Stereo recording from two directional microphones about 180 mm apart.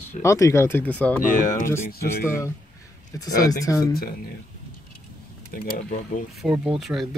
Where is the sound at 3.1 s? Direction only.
20° left (ahead or behind).